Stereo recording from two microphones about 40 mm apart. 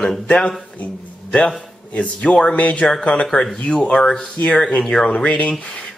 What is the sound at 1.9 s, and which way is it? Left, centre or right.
Speech, left.